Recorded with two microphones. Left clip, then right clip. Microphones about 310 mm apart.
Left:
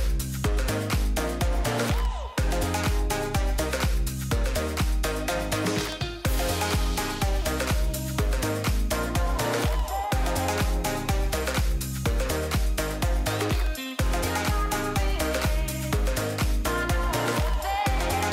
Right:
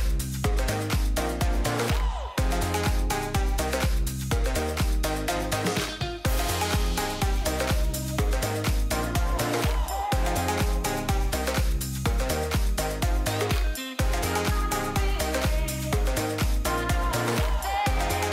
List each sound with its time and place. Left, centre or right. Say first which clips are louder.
0.4 s music: even; centre
3.5 s music: even; centre
8.2 s music: even; centre
10.6 s music: even; centre
14.7 s music: even; centre